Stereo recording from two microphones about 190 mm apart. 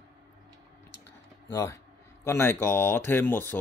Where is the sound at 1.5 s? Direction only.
15° left (ahead or behind).